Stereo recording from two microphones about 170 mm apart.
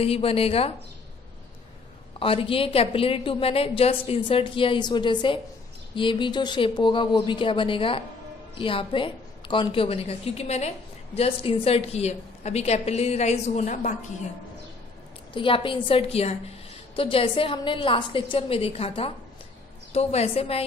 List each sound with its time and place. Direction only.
0.0 s a woman's voice: 35° left (ahead or behind)
2.1 s a woman's voice: 35° left (ahead or behind)
15.3 s a woman's voice: 30° left (ahead or behind)